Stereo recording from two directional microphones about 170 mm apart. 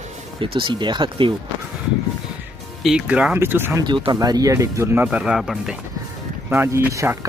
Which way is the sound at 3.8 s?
25° right (ahead or behind).